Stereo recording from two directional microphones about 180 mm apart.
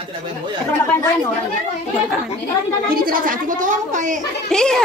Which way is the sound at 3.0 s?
50° right (ahead or behind).